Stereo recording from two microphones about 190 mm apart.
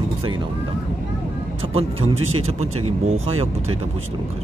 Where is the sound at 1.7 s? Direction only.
30° right (ahead or behind).